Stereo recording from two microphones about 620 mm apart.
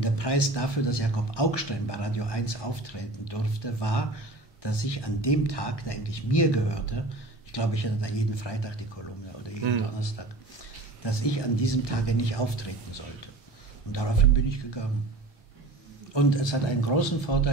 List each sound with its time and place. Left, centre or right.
0.0 s speech: left
9.9 s speech: left
16.1 s a man's voice: left